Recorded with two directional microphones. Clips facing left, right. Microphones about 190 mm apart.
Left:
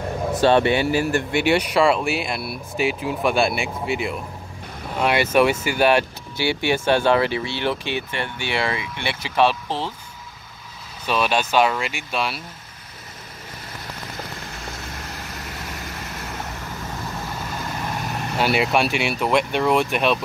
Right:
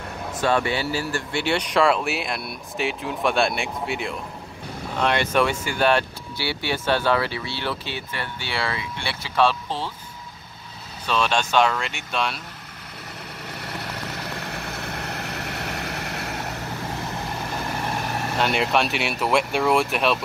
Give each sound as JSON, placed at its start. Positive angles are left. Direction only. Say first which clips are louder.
{"t": 0.4, "sound": "speech", "louder": "left 5 dB", "side_deg": 25}
{"t": 11.1, "sound": "speech", "louder": "left 2 dB", "side_deg": 10}
{"t": 13.6, "sound": "vehicle", "louder": "right 4 dB", "side_deg": -65}
{"t": 18.4, "sound": "speech", "louder": "left 3 dB", "side_deg": 5}